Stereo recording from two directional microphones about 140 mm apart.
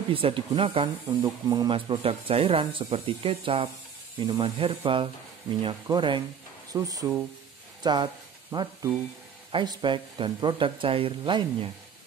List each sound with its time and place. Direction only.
0.1 s speech: 40° right (ahead or behind)
1.0 s speech: 25° right (ahead or behind)
1.7 s speech: 40° right (ahead or behind)